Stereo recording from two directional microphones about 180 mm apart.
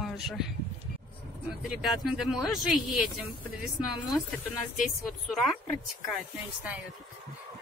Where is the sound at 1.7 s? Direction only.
Centre (ahead or behind).